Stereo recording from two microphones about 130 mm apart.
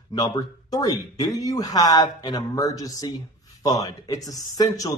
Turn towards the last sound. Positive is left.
turn(degrees=30)  # may be behind; listen again after turning